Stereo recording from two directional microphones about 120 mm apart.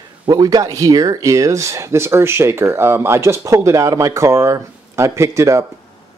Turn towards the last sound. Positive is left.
turn(degrees=-25)  # may be behind; listen again after turning